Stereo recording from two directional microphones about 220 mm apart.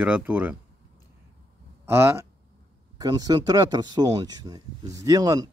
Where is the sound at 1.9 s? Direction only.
10° right (ahead or behind).